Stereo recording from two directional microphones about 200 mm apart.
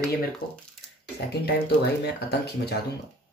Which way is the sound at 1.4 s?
55° left (ahead or behind).